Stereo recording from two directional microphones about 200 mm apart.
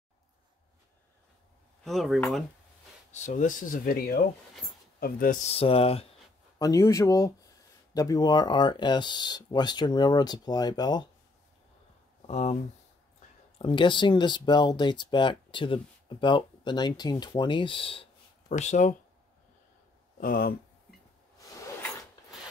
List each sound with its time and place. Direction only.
1.9 s speech: centre (ahead or behind)
3.1 s speech: 35° left (ahead or behind)
5.5 s speech: 30° left (ahead or behind)
6.6 s speech: 15° left (ahead or behind)
12.3 s speech: 35° left (ahead or behind)
13.6 s speech: 25° left (ahead or behind)
20.2 s speech: 45° left (ahead or behind)